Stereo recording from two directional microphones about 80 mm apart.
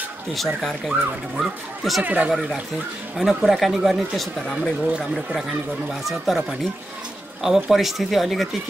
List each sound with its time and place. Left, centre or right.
0.3 s speech: centre
2.0 s speech: centre
3.2 s speech: centre
6.0 s speech: centre